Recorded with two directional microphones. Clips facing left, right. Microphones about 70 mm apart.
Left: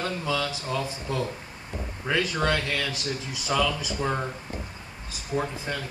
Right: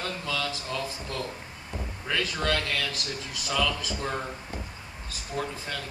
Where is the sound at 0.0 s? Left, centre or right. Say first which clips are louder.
Left 4 dB; centre.